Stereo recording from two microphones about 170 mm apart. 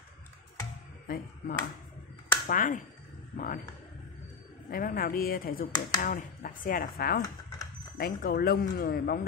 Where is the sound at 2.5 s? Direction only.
55° left (ahead or behind).